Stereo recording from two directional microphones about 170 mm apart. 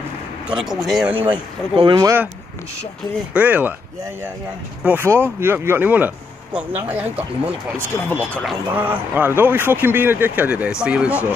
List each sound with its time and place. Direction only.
0.5 s speech: 5° right (ahead or behind)
1.8 s speech: 30° right (ahead or behind)
3.3 s a man's voice: 10° right (ahead or behind)
4.8 s a man's voice: 15° right (ahead or behind)
7.7 s speech: 10° left (ahead or behind)
8.7 s a man's voice: 10° right (ahead or behind)